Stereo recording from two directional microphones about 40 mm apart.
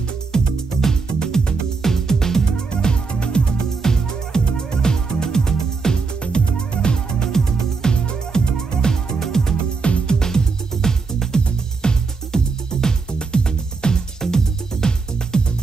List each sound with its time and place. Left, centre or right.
0.3 s music: centre
6.2 s music: left
9.8 s music: left
10.1 s music: centre